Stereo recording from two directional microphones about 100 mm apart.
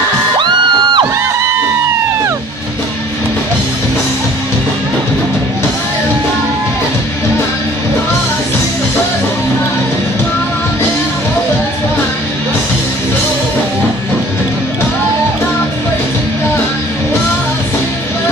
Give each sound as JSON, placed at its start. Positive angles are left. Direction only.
{"t": 0.4, "sound": "music", "side_deg": -50}